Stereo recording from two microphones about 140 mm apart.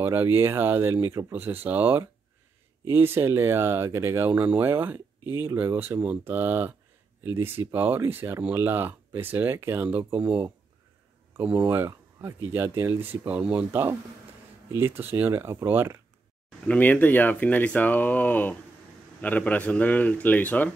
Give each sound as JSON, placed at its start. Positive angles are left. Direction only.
{"t": 0.0, "sound": "speech", "side_deg": -15}
{"t": 16.6, "sound": "speech", "side_deg": 10}